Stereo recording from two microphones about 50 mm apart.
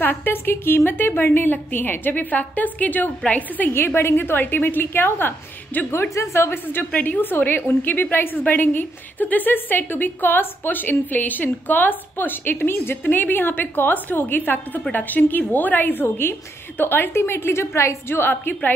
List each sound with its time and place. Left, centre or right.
0.0 s a woman's voice: left
3.7 s a woman's voice: left
5.9 s a woman's voice: left
6.9 s a woman's voice: left
13.0 s a woman's voice: left
17.1 s a woman's voice: left